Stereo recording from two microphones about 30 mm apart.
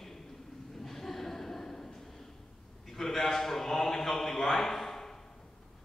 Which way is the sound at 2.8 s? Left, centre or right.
Centre.